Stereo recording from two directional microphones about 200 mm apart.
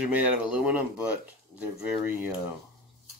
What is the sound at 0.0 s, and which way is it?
Speech, 5° right (ahead or behind).